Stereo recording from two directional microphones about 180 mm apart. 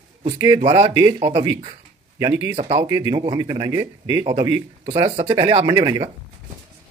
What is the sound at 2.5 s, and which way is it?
Speech, 30° right (ahead or behind).